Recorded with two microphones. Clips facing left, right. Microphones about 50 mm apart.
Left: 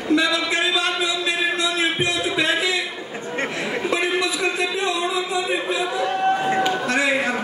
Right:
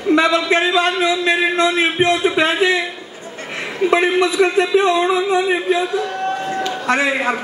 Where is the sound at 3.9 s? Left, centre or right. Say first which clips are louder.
Right 9 dB; right.